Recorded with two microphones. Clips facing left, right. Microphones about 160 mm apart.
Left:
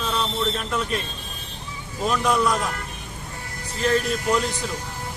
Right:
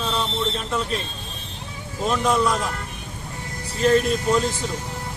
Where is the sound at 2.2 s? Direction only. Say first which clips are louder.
Right 1 dB; centre (ahead or behind).